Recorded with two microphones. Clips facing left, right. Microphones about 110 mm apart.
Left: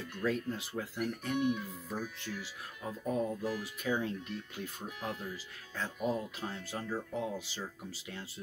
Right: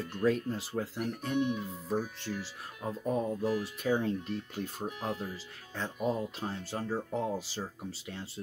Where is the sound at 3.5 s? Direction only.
35° right (ahead or behind).